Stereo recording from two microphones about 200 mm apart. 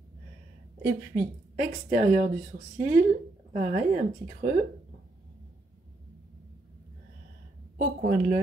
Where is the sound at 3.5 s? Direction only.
35° right (ahead or behind).